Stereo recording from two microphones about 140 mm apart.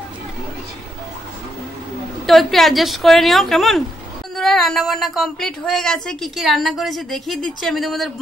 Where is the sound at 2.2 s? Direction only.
Centre (ahead or behind).